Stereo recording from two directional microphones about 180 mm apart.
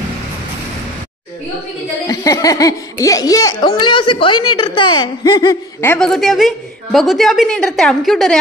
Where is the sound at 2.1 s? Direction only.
20° left (ahead or behind).